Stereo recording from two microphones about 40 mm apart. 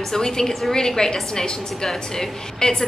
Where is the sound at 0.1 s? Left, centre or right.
Centre.